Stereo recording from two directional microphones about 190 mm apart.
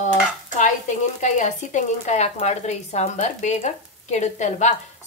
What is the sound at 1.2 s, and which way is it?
Speech, 40° left (ahead or behind).